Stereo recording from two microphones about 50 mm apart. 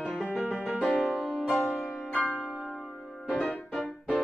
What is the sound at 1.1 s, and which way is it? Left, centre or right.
Music, left.